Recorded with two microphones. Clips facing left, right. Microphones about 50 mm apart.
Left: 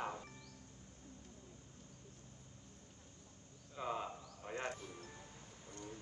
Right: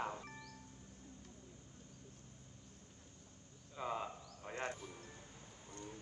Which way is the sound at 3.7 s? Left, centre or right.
Centre.